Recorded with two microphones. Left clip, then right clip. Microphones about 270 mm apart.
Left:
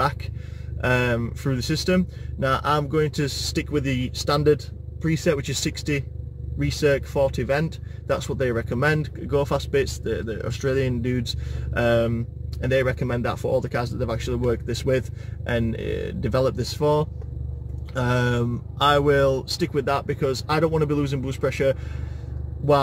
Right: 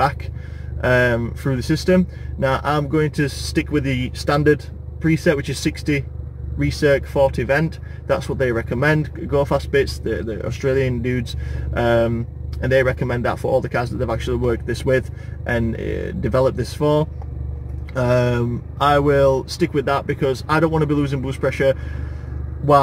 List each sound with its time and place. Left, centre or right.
0.7 s speech: centre